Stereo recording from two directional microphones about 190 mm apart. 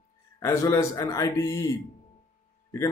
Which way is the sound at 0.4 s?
15° left (ahead or behind).